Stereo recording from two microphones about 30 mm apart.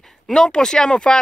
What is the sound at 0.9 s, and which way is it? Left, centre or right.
Speech, left.